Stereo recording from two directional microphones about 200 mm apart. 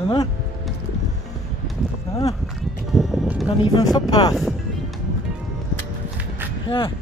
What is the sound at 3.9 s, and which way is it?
Speech, 20° left (ahead or behind).